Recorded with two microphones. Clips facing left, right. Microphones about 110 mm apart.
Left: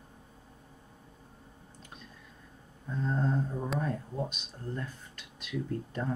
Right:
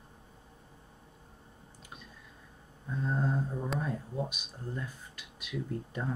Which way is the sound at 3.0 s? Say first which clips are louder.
Left 1 dB; 5° right (ahead or behind).